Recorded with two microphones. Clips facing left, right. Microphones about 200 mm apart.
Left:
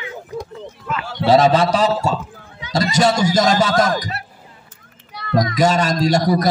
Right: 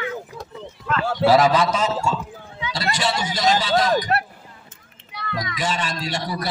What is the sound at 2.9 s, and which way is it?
Speech, 45° left (ahead or behind).